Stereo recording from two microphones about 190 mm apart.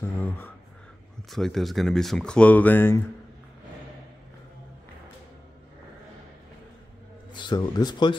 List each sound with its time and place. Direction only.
0.0 s speech: 10° left (ahead or behind)
1.3 s speech: centre (ahead or behind)
7.3 s speech: 20° left (ahead or behind)